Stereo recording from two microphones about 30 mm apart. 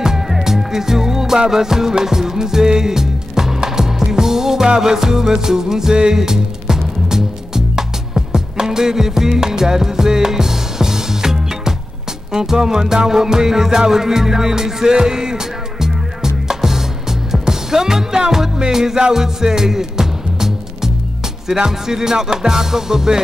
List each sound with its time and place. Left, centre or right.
0.0 s music: centre